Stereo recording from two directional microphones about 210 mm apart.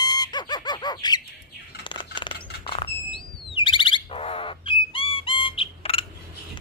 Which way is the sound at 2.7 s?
25° left (ahead or behind).